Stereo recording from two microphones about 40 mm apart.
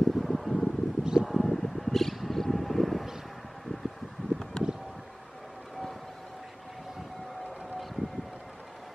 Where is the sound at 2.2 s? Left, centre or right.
Centre.